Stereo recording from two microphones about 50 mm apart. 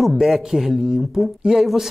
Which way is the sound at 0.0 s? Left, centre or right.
Centre.